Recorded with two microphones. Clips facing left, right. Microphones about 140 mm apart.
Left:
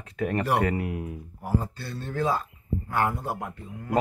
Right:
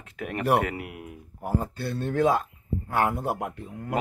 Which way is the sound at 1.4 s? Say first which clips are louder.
Right 1 dB; 55° right (ahead or behind).